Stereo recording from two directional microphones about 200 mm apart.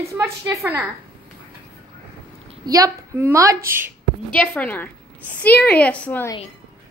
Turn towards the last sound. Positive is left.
turn(degrees=10)  # may be behind; listen again after turning